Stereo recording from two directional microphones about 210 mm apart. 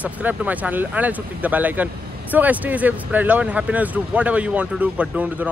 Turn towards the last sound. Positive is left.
turn(degrees=-5)  # may be behind; listen again after turning